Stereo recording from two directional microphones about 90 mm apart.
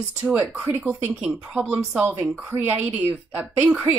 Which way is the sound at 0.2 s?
20° right (ahead or behind).